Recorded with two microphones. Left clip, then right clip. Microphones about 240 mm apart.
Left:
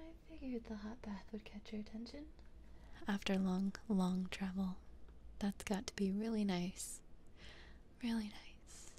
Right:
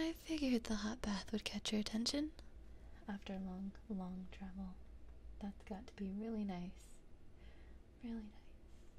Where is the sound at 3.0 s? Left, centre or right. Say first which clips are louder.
Left 9 dB; left.